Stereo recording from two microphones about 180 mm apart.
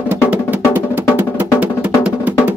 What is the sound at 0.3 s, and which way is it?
Music, 10° right (ahead or behind).